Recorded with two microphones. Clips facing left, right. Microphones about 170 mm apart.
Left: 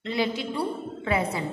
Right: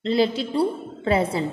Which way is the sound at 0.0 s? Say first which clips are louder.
Right 6 dB; 30° right (ahead or behind).